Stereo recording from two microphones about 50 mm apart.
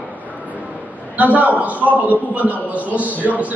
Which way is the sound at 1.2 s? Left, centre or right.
Right.